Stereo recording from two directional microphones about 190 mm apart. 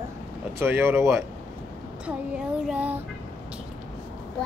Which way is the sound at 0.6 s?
10° right (ahead or behind).